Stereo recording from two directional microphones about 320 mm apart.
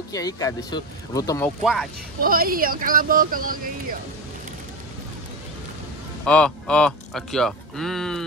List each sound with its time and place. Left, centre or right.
0.1 s speech: centre
2.2 s speech: right
6.2 s speech: centre